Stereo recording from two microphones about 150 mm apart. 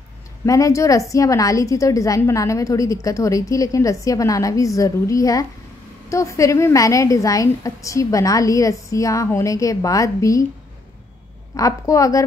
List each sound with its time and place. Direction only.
0.5 s a woman's voice: 20° left (ahead or behind)
11.5 s a woman's voice: 20° left (ahead or behind)